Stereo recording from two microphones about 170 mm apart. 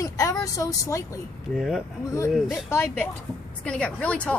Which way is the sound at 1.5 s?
Centre (ahead or behind).